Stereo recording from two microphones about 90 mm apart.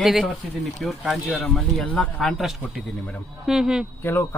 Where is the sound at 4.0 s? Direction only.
25° left (ahead or behind).